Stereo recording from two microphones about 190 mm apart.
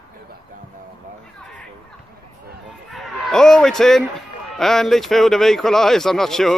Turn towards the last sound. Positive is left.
turn(degrees=0)  # may be behind; listen again after turning